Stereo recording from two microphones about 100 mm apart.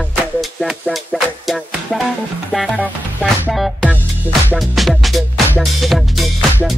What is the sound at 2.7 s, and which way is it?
Music, 15° right (ahead or behind).